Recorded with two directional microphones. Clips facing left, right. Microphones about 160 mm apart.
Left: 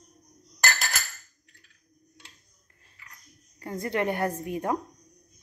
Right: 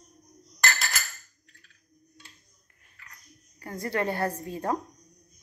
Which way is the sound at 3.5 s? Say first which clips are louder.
Left 1 dB; 20° left (ahead or behind).